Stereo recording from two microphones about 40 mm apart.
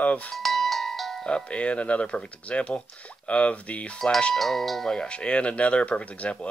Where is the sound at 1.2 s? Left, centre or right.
Left.